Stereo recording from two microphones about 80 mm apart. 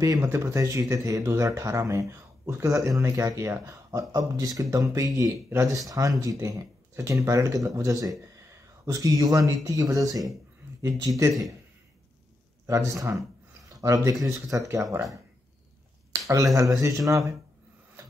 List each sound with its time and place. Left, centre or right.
0.2 s speech: right
0.6 s speech: right
5.9 s speech: right
12.6 s speech: right
16.1 s speech: right